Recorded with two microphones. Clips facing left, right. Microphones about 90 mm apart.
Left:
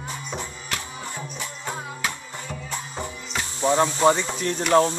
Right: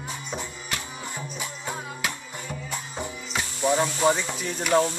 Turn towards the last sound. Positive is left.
turn(degrees=-5)  # may be behind; listen again after turning